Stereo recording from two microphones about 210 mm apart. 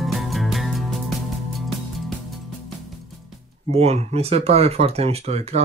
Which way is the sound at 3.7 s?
30° right (ahead or behind).